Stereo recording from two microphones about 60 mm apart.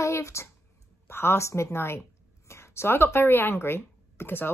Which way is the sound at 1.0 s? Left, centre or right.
Left.